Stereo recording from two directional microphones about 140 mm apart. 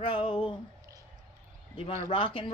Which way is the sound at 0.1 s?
35° left (ahead or behind).